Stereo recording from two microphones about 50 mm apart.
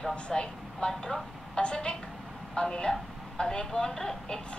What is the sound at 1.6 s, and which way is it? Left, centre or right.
A woman's voice, left.